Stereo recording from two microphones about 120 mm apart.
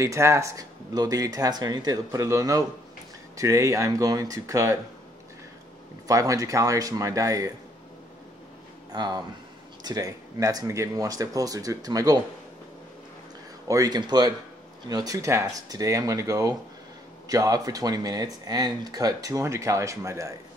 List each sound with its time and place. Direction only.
0.0 s speech: 25° right (ahead or behind)
6.0 s speech: 30° right (ahead or behind)
8.9 s speech: 35° right (ahead or behind)
13.7 s speech: 30° right (ahead or behind)